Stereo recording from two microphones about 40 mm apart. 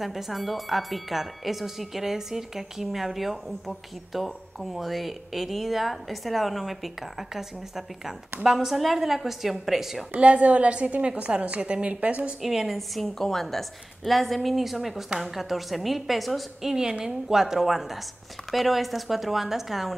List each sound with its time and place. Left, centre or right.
0.0 s speech: centre
10.1 s a woman's voice: right
11.9 s a woman's voice: right
12.4 s speech: centre
17.0 s a woman's voice: centre